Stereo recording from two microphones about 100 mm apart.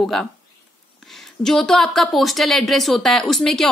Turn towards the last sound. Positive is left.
turn(degrees=5)  # may be behind; listen again after turning